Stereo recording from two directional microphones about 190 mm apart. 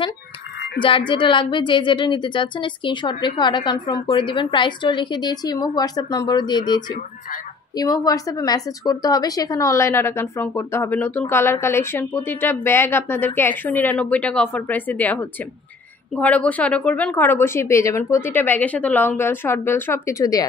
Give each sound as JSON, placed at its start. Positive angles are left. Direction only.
{"t": 0.7, "sound": "a woman's voice", "side_deg": 25}